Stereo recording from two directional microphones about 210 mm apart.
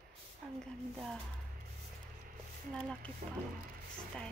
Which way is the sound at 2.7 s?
5° left (ahead or behind).